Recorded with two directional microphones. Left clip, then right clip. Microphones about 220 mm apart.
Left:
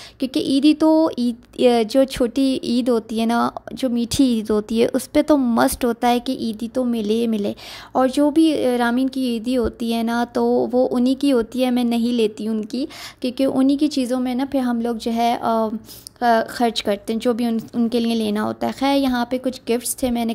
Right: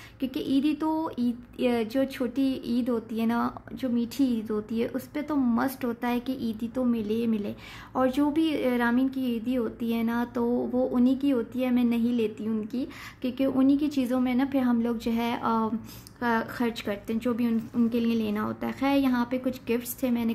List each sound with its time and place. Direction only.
0.2 s speech: 35° left (ahead or behind)